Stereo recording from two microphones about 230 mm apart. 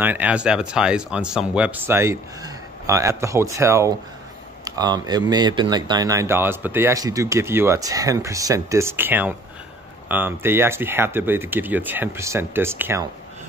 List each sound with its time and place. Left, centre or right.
0.0 s speech: centre